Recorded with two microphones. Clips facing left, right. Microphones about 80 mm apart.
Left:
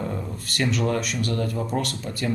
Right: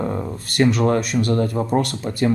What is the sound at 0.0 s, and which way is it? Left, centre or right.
A man's voice, right.